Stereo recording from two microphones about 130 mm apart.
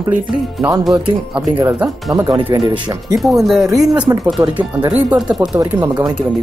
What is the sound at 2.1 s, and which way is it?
Speech, 30° right (ahead or behind).